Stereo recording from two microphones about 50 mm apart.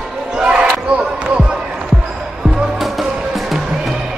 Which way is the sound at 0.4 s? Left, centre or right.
Right.